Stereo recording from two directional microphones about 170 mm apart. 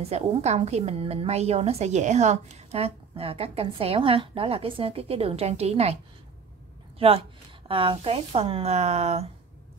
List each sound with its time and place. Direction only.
0.0 s a woman's voice: 35° right (ahead or behind)
7.0 s a woman's voice: 35° right (ahead or behind)